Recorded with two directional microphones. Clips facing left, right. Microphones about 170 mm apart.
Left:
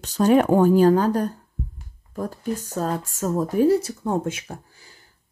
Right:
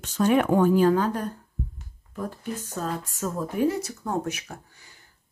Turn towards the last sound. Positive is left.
turn(degrees=25)  # may be behind; listen again after turning